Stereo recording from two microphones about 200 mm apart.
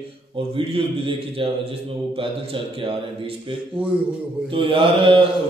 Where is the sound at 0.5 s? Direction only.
25° right (ahead or behind).